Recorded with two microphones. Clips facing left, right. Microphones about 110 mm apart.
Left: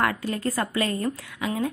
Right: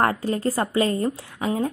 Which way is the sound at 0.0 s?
35° right (ahead or behind).